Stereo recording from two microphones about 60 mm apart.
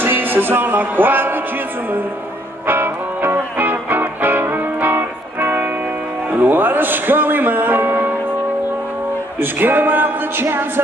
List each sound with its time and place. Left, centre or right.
0.0 s music: right
2.6 s music: right
9.4 s speech: right